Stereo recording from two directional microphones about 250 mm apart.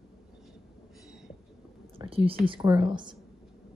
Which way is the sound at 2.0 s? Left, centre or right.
Right.